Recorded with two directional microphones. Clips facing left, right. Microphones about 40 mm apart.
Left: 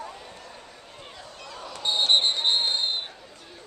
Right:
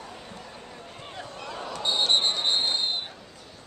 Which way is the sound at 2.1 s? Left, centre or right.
Centre.